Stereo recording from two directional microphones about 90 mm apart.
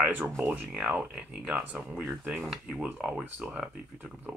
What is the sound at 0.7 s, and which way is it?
Speech, 15° right (ahead or behind).